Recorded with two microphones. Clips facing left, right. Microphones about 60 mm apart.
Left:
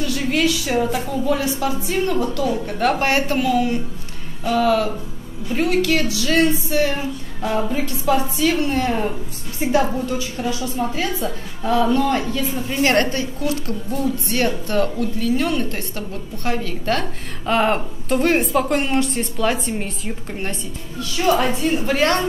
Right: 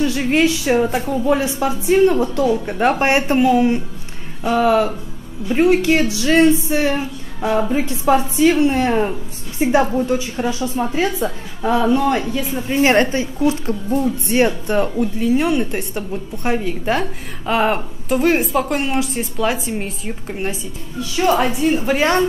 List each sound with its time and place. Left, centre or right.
0.0 s a woman's voice: right
17.5 s a woman's voice: centre
21.0 s a woman's voice: centre